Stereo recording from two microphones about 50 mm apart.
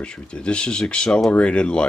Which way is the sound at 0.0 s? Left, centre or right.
Left.